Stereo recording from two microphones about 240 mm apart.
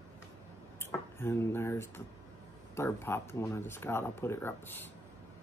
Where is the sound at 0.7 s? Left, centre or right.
Centre.